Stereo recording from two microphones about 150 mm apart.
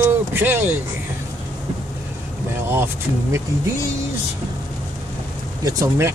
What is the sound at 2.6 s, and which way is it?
Speech, 15° right (ahead or behind).